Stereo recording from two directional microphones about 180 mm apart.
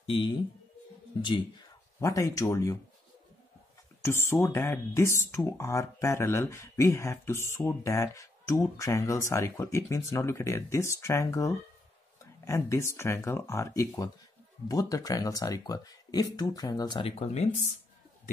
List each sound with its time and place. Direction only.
0.0 s speech: 30° left (ahead or behind)
2.0 s speech: 20° left (ahead or behind)
4.0 s speech: 15° left (ahead or behind); by 17.5 s 35° left (ahead or behind)